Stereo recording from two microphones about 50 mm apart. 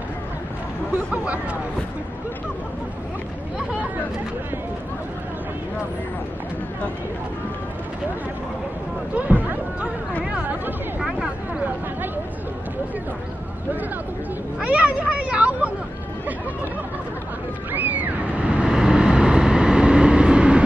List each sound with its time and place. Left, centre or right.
0.9 s speech: right
9.1 s speech: right
11.0 s a sound: centre
14.6 s speech: right
17.7 s speech: right
18.4 s vehicle: centre